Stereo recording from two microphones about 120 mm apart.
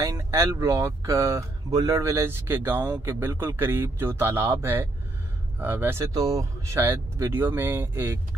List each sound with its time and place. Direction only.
0.0 s speech: 25° right (ahead or behind)